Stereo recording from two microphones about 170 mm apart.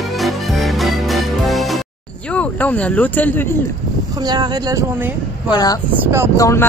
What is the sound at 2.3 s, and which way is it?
Speech, 10° left (ahead or behind).